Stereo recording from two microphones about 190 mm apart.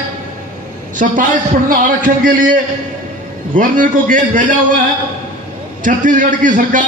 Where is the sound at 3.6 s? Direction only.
45° right (ahead or behind).